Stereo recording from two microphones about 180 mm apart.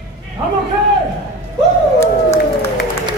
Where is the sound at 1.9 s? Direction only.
15° left (ahead or behind).